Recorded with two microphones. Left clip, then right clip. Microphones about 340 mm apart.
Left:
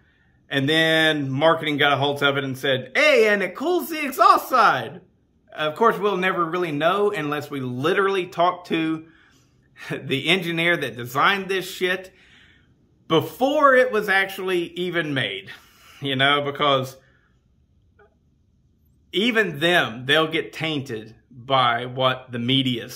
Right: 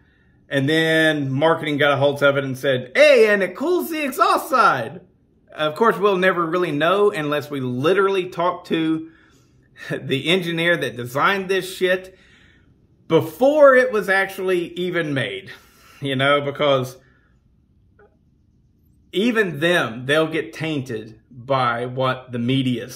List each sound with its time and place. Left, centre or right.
0.5 s speech: centre
19.0 s speech: centre